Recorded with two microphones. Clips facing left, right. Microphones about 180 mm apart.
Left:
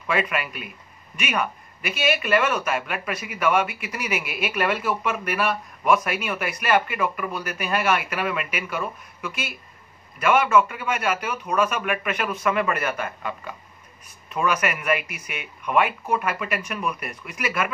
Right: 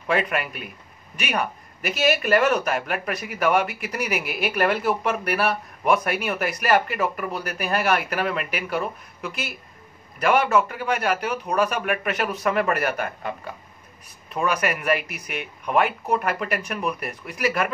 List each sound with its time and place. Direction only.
0.0 s a man's voice: 35° right (ahead or behind)
6.0 s speech: 40° right (ahead or behind)